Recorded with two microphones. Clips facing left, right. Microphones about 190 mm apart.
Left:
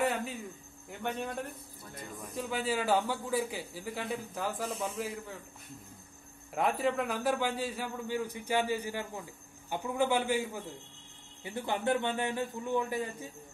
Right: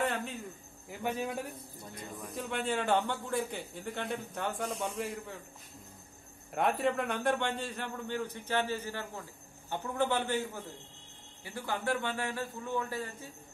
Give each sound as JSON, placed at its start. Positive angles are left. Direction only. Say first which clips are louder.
{"t": 0.0, "sound": "cricket", "louder": "left 2 dB", "side_deg": 0}
{"t": 2.2, "sound": "a man's voice", "louder": "left 1 dB", "side_deg": 0}
{"t": 6.5, "sound": "a man's voice", "louder": "even", "side_deg": 0}